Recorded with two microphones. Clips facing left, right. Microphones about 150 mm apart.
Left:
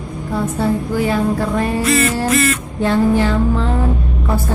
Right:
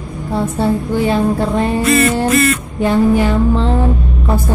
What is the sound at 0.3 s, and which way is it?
Speech, 25° right (ahead or behind).